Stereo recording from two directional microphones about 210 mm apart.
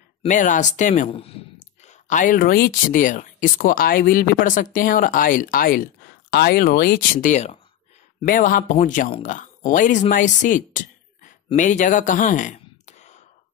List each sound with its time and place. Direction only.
0.2 s speech: 35° left (ahead or behind)